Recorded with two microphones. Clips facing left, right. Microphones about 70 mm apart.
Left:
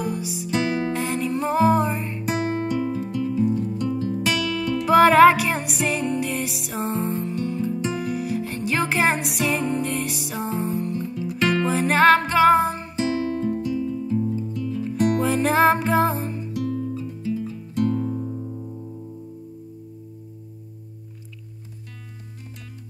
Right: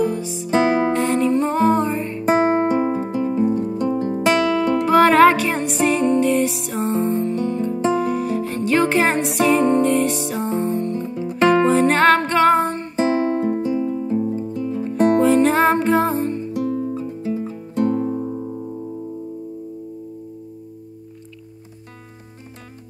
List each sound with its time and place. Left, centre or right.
0.0 s music: centre
0.5 s music: right
0.9 s music: centre
2.2 s music: right
4.8 s music: centre
11.1 s music: right
11.6 s music: centre
12.9 s music: right
15.1 s music: centre
16.5 s music: right